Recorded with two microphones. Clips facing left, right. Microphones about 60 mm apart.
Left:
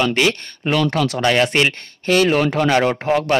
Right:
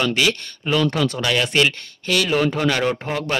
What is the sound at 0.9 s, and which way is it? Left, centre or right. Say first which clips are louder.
Speech: left 2 dB; left.